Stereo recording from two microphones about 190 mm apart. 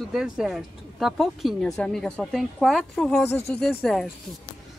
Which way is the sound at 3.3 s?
35° left (ahead or behind).